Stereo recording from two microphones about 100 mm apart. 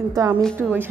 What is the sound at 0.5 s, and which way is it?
Speech, 20° right (ahead or behind).